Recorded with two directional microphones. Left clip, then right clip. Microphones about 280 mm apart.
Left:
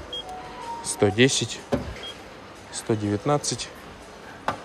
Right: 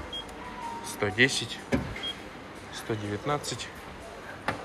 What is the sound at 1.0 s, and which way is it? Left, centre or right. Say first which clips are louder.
Speech: left 5 dB; centre.